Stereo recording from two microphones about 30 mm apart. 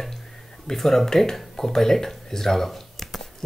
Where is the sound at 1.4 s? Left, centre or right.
Centre.